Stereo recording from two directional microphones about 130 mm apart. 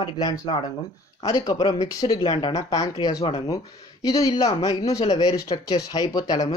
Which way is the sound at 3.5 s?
25° left (ahead or behind).